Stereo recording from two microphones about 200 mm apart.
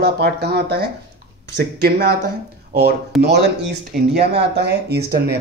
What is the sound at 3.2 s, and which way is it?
Speech, 55° right (ahead or behind).